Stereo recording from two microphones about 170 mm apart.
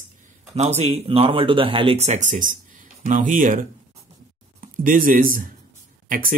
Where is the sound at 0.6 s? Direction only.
40° right (ahead or behind).